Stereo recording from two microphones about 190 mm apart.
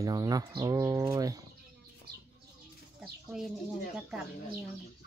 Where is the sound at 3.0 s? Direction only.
Centre (ahead or behind).